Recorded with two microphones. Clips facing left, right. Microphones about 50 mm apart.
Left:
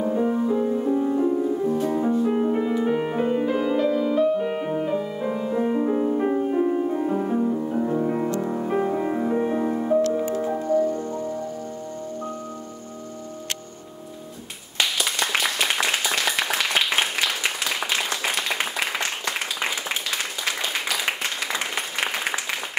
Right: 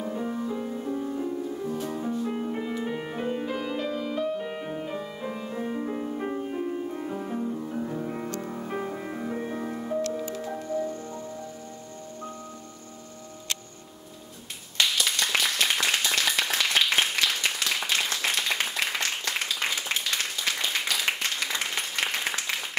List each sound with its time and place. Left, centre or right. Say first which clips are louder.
0.0 s music: left 8 dB; centre
4.5 s music: left 8 dB; centre
10.0 s music: left 8 dB; left
14.8 s clapping: left 2 dB; centre
16.8 s applause: left 1 dB; centre